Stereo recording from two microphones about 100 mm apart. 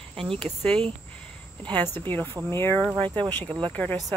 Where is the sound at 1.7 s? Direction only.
20° left (ahead or behind).